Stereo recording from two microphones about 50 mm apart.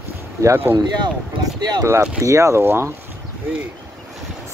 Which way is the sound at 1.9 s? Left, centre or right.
Right.